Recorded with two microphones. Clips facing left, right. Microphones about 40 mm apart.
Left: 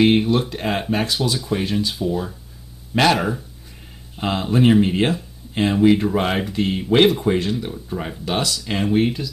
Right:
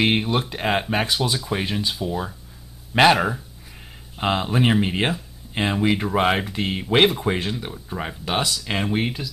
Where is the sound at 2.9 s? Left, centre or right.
Centre.